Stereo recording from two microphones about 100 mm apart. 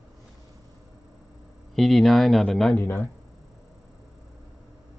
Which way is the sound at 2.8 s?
20° left (ahead or behind).